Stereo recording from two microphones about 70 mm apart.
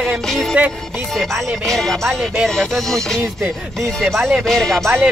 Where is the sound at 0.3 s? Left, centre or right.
Centre.